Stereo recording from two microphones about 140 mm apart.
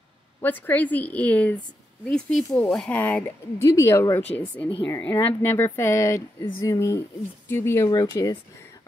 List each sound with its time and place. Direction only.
0.4 s speech: 15° left (ahead or behind)